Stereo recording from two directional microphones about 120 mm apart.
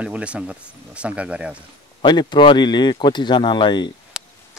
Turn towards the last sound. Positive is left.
turn(degrees=-5)  # may be behind; listen again after turning